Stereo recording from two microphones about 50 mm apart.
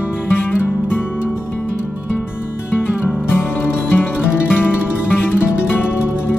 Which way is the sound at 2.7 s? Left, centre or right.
Left.